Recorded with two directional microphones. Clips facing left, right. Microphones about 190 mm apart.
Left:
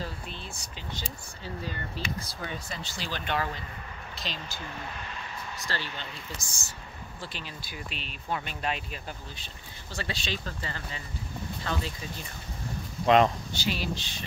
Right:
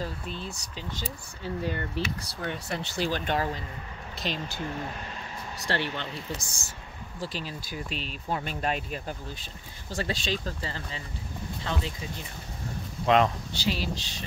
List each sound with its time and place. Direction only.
0.3 s speech: 40° right (ahead or behind)
1.6 s speech: 60° right (ahead or behind); by 3.4 s 45° right (ahead or behind)
4.2 s speech: 55° right (ahead or behind)
5.7 s speech: 65° right (ahead or behind)
7.2 s speech: 40° right (ahead or behind); by 12.3 s 20° right (ahead or behind)
13.0 s speech: centre (ahead or behind)
13.5 s speech: 35° right (ahead or behind)